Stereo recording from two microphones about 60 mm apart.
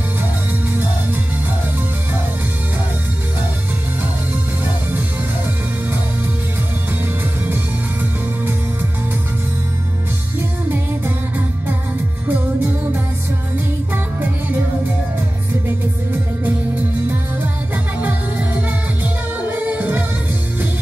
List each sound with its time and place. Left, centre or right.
12.3 s music: right
16.1 s music: right
19.5 s music: right